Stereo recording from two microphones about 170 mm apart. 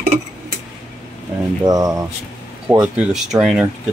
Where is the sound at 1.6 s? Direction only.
20° right (ahead or behind).